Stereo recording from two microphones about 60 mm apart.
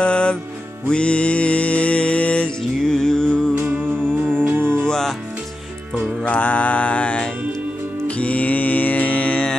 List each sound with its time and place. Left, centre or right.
0.0 s music: centre
4.4 s music: right
4.8 s music: centre
6.2 s mantra: left
8.1 s music: left